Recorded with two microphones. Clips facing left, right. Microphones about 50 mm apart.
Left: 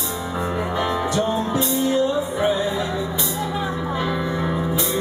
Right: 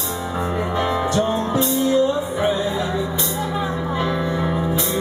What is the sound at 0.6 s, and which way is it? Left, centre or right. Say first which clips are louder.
Music: right 2 dB; centre.